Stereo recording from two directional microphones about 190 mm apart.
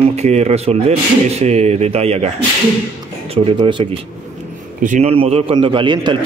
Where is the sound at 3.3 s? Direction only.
30° right (ahead or behind).